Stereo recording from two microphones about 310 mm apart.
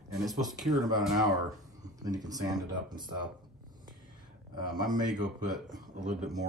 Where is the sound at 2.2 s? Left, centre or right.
Centre.